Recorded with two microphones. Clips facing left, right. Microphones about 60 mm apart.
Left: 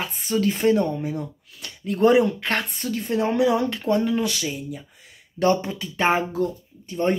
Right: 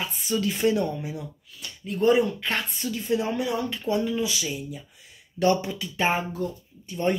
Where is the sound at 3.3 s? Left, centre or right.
Left.